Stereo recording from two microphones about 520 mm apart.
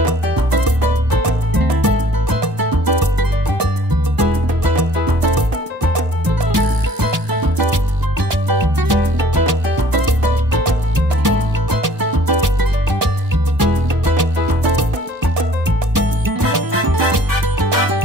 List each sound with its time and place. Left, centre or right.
0.3 s music: right
15.9 s music: right